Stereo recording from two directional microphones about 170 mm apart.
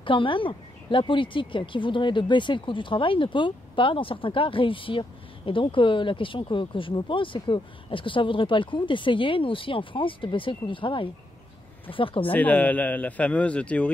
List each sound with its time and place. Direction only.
0.0 s speech: 30° left (ahead or behind)
12.3 s a man's voice: 10° left (ahead or behind)